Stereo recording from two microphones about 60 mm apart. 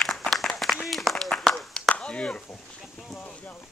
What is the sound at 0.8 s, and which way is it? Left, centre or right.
Clapping, centre.